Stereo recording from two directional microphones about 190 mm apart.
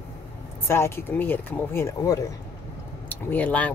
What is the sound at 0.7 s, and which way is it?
Speech, 15° left (ahead or behind).